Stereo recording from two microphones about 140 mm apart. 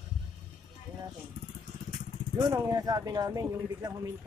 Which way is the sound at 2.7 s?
30° right (ahead or behind).